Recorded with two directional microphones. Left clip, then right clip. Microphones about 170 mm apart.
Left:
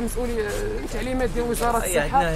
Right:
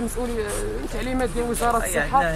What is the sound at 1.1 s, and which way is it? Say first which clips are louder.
Speech: even; 10° right (ahead or behind).